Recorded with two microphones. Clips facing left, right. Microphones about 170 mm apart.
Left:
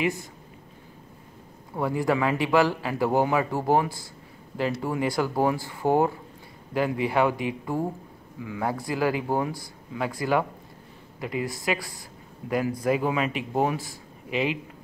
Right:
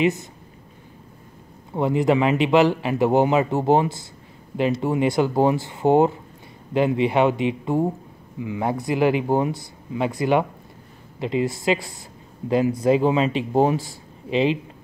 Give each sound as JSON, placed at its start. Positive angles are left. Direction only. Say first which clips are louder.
{"t": 0.0, "sound": "a man's voice", "louder": "right 6 dB", "side_deg": -20}
{"t": 1.7, "sound": "a man's voice", "louder": "right 5 dB", "side_deg": -20}